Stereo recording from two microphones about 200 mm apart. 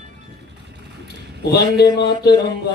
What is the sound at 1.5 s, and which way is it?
Speech, 55° left (ahead or behind).